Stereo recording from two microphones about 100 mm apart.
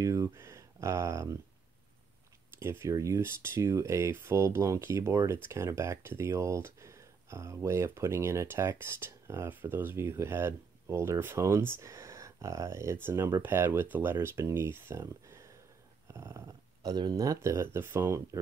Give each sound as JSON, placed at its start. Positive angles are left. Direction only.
{"t": 0.0, "sound": "speech", "side_deg": -30}
{"t": 2.6, "sound": "speech", "side_deg": -25}
{"t": 16.8, "sound": "speech", "side_deg": -45}